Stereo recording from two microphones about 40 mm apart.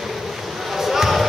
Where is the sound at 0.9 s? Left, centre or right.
Centre.